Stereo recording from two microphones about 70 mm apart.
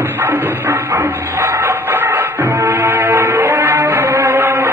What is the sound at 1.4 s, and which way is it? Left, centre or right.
Music, right.